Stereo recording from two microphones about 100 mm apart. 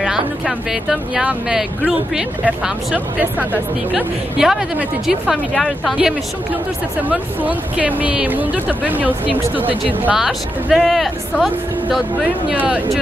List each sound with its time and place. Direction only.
0.0 s speech: 5° right (ahead or behind)
7.1 s speech: 15° right (ahead or behind)
10.1 s speech: 5° right (ahead or behind)